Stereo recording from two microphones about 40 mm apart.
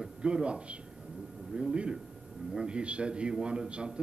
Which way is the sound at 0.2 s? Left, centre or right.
Right.